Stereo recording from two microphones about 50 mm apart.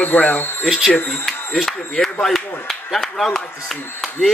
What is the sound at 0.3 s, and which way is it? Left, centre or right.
Speech, left.